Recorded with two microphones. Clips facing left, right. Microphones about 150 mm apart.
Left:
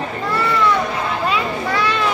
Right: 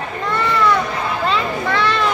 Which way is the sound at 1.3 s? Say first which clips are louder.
Right 1 dB; 10° left (ahead or behind).